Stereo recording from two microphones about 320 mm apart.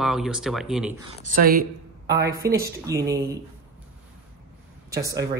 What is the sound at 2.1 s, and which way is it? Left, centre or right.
Speech, centre.